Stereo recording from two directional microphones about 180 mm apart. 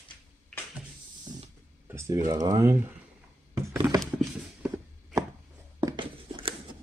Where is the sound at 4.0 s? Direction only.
Centre (ahead or behind).